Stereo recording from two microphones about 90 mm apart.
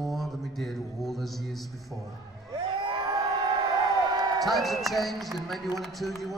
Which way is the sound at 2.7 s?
65° right (ahead or behind).